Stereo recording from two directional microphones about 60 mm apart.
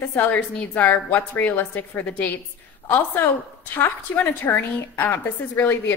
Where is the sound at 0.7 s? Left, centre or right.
Left.